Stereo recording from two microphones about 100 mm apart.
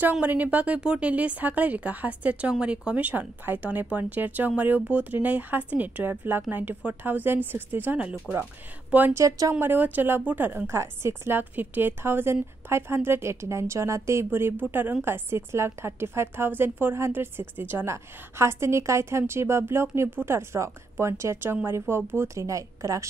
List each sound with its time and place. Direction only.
0.0 s speech: 15° right (ahead or behind)
9.1 s a woman's voice: 30° right (ahead or behind)